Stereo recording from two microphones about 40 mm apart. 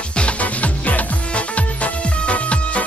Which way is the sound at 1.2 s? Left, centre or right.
Left.